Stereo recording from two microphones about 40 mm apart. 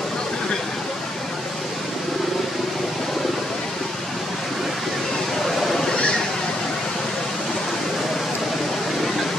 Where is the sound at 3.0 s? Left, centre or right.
Centre.